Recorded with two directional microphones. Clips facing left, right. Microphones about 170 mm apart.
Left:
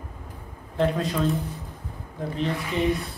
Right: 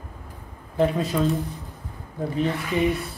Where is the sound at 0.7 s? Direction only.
5° right (ahead or behind).